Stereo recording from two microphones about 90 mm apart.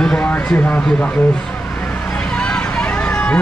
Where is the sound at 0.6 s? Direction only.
20° left (ahead or behind).